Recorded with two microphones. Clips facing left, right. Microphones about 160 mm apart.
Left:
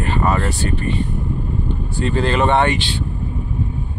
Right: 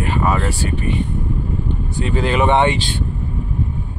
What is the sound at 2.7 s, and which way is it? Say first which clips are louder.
Speech: even; 45° right (ahead or behind).